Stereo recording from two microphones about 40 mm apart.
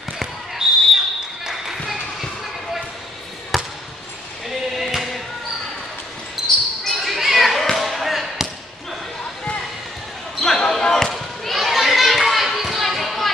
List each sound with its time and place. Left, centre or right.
0.2 s basketball bounce: centre
3.5 s basketball bounce: centre
4.7 s music: centre
6.4 s basketball bounce: centre
7.1 s children playing: centre
7.7 s basketball bounce: centre
10.4 s basketball bounce: centre
11.1 s children playing: centre